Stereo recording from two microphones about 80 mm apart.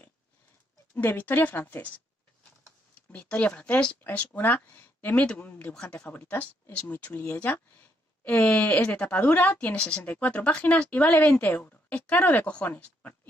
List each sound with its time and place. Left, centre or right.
0.9 s speech: left